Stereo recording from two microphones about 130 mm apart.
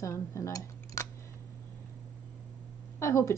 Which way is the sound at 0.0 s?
20° left (ahead or behind).